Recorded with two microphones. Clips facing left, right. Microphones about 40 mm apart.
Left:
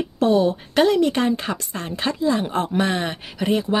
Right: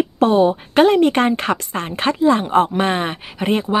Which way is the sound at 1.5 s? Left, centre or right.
Right.